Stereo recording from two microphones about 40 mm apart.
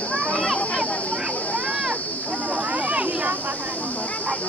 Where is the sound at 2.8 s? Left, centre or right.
Right.